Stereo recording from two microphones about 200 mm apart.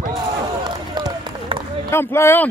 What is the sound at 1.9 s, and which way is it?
Speech, 10° left (ahead or behind).